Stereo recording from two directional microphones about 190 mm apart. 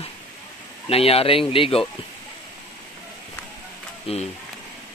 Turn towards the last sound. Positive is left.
turn(degrees=30)  # may be behind; listen again after turning